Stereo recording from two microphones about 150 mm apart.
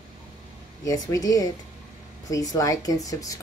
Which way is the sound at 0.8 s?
25° left (ahead or behind).